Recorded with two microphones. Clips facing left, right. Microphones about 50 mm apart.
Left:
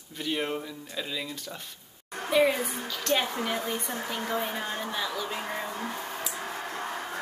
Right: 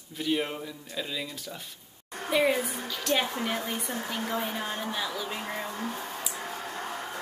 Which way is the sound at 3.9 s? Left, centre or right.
Centre.